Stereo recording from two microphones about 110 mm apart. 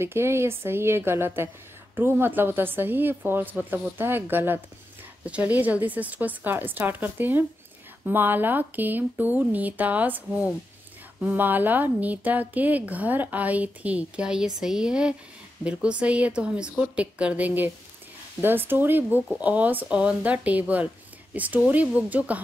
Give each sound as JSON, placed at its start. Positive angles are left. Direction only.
{"t": 0.0, "sound": "a woman's voice", "side_deg": -25}